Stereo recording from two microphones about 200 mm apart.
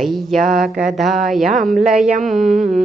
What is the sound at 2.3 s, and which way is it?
Speech, 40° right (ahead or behind).